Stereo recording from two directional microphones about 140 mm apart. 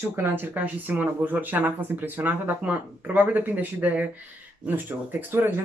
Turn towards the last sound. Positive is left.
turn(degrees=-15)  # may be behind; listen again after turning